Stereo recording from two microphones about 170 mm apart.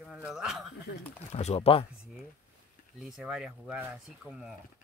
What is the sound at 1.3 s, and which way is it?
Speech, 40° left (ahead or behind).